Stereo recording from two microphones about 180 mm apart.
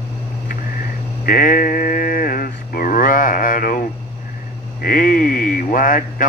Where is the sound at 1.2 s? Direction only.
50° left (ahead or behind).